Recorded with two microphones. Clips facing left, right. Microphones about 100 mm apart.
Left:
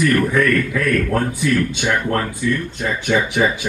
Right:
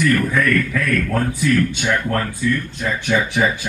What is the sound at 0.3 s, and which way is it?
Speech, 25° left (ahead or behind).